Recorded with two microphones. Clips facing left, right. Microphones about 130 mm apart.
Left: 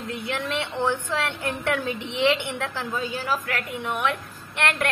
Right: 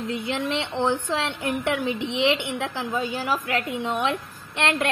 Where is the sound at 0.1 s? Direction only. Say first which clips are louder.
Right 1 dB; 20° right (ahead or behind).